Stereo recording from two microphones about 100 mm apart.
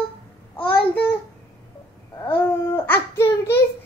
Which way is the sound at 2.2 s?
20° left (ahead or behind).